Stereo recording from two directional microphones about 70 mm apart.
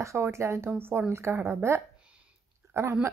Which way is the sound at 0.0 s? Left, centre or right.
Right.